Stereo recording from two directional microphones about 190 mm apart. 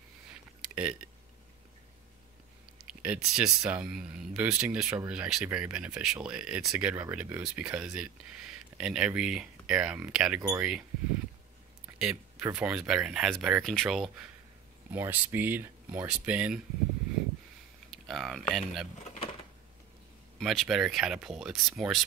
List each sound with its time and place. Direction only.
0.7 s speech: 5° right (ahead or behind)
2.8 s speech: 5° right (ahead or behind)
12.0 s speech: 5° right (ahead or behind)
17.9 s speech: centre (ahead or behind)
18.9 s a sound: 35° left (ahead or behind)
20.3 s speech: centre (ahead or behind)